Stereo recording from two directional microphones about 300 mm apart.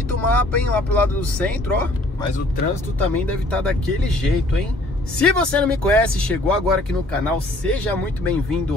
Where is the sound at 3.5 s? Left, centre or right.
Centre.